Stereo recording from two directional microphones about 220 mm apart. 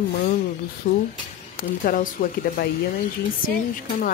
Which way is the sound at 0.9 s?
35° left (ahead or behind).